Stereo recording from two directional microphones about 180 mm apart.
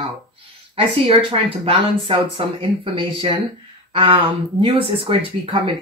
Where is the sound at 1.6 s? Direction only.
30° right (ahead or behind).